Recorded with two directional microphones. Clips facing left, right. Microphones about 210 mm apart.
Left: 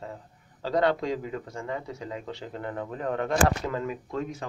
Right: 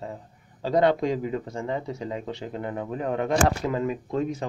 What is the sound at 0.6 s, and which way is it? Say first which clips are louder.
A man's voice: right 4 dB; 20° right (ahead or behind).